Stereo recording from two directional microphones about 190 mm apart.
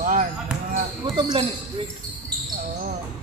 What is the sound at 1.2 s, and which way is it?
Speech, 25° right (ahead or behind).